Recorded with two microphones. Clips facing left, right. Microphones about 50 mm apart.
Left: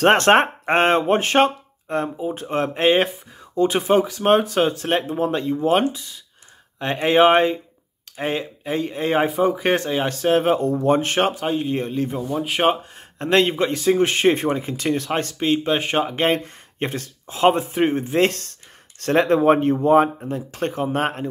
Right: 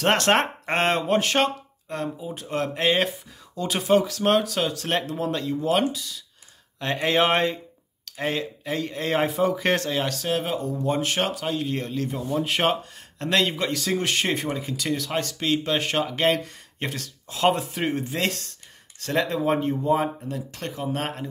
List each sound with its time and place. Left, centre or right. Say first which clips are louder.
0.0 s speech: left 6 dB; left
4.8 s speech: left 5 dB; centre
10.1 s speech: left 8 dB; left
12.4 s speech: left 4 dB; centre
12.9 s speech: left 6 dB; left
15.3 s speech: left 4 dB; left